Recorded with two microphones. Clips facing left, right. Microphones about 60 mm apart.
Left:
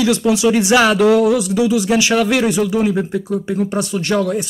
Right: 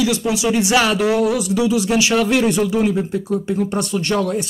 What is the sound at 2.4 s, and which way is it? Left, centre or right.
Speech, centre.